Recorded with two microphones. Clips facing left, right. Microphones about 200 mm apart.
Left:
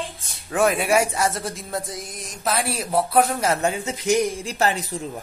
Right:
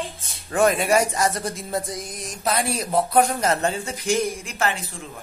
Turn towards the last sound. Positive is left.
turn(degrees=40)  # may be behind; listen again after turning